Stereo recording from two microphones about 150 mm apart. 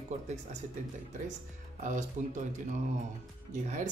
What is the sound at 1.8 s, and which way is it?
Speech, 55° right (ahead or behind).